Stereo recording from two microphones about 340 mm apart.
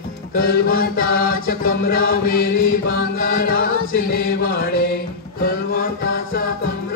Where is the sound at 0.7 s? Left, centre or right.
Left.